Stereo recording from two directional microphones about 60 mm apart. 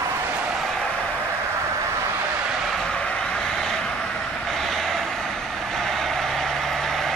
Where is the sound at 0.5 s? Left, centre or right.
Centre.